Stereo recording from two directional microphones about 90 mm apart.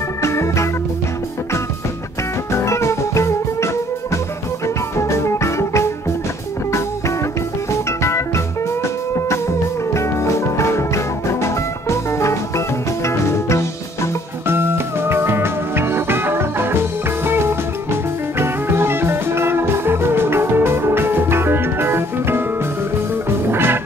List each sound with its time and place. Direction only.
0.2 s organ: 30° left (ahead or behind)
2.5 s music: 30° left (ahead or behind)
9.9 s music: 30° left (ahead or behind)
14.5 s music: 25° right (ahead or behind)
23.5 s music: 25° right (ahead or behind)